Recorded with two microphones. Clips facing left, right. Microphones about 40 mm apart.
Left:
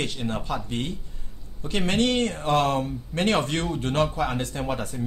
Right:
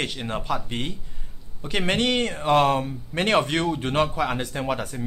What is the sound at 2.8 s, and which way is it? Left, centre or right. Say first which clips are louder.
Speech: even; centre.